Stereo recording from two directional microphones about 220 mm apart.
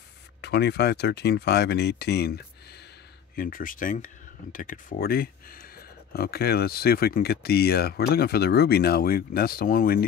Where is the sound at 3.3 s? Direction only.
40° left (ahead or behind).